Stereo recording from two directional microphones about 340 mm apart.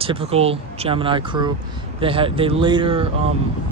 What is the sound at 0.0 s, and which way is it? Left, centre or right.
Speech, centre.